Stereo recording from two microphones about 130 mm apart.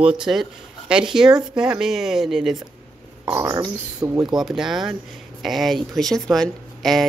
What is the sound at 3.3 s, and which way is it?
Speech, 30° right (ahead or behind).